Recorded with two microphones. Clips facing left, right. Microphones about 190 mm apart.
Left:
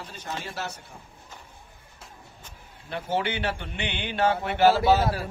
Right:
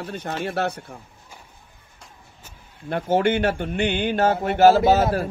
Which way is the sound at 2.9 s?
50° right (ahead or behind).